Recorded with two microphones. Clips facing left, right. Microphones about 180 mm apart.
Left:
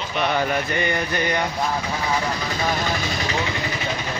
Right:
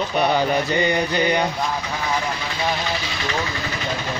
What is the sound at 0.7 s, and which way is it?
Mantra, 20° right (ahead or behind).